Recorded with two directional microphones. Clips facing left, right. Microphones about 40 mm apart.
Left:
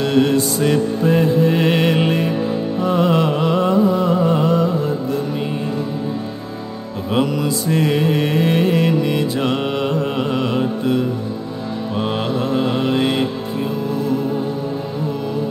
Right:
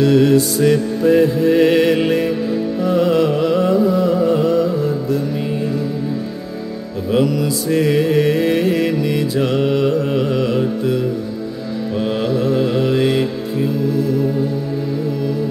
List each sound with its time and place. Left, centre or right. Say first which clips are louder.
0.0 s music: right 3 dB; centre
7.1 s mantra: right 2 dB; centre
12.2 s mantra: right 4 dB; left